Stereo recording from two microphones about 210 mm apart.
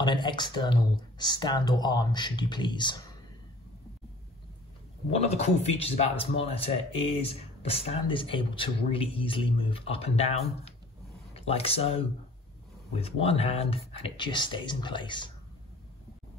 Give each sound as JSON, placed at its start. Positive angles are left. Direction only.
{"t": 0.0, "sound": "speech", "side_deg": 20}
{"t": 5.1, "sound": "speech", "side_deg": 30}